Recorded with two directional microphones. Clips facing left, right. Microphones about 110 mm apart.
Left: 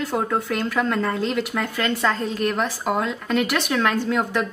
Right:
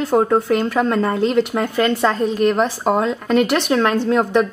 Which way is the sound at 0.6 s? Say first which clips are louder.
Right 5 dB; 25° right (ahead or behind).